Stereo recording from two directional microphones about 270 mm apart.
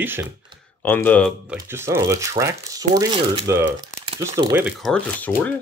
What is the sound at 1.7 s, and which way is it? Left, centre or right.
Speech, centre.